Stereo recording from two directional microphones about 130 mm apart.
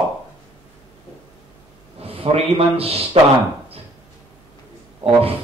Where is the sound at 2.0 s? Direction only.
50° right (ahead or behind).